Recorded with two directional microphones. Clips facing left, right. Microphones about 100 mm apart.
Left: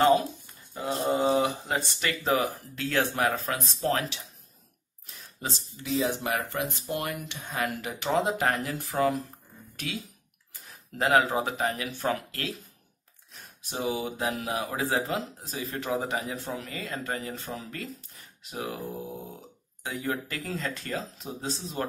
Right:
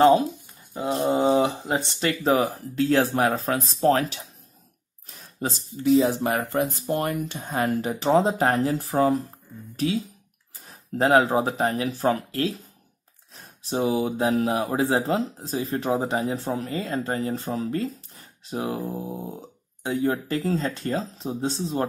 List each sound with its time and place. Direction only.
0.7 s wild animals: 25° right (ahead or behind)
1.1 s a sound: 30° right (ahead or behind)
2.7 s speech: 35° right (ahead or behind)
10.5 s speech: 35° right (ahead or behind)